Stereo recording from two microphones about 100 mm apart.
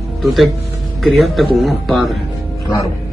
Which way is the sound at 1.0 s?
Centre (ahead or behind).